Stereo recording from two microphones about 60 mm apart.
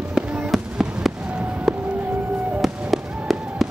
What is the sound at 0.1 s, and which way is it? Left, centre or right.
Fireworks, centre.